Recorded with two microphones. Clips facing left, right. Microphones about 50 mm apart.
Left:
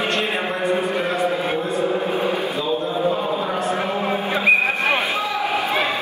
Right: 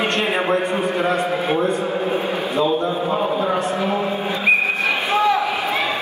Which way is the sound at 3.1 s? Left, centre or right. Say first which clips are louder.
Right 2 dB; centre.